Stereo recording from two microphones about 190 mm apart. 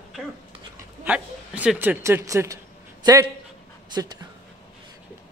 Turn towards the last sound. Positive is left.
turn(degrees=-20)  # may be behind; listen again after turning